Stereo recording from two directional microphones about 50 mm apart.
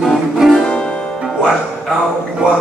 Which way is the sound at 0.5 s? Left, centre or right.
Centre.